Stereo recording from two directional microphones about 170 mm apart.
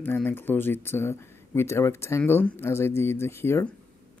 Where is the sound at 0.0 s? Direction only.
10° left (ahead or behind).